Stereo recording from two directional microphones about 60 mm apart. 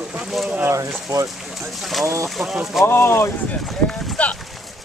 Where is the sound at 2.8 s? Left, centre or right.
Left.